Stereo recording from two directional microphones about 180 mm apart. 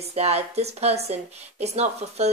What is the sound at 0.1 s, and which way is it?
Speech, 35° right (ahead or behind).